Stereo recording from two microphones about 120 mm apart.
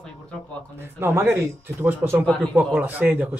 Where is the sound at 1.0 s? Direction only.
20° right (ahead or behind).